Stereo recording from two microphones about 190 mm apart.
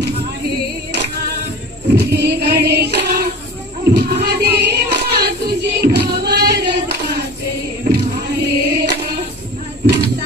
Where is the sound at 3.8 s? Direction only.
60° right (ahead or behind).